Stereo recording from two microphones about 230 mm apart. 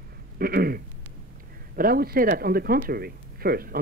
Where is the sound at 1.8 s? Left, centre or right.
Right.